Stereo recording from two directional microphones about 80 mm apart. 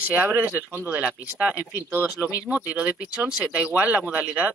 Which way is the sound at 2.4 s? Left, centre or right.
Centre.